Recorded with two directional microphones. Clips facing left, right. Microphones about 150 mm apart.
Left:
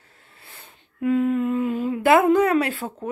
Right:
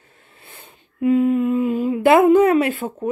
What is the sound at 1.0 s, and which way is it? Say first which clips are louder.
Speech: right 4 dB; 15° right (ahead or behind).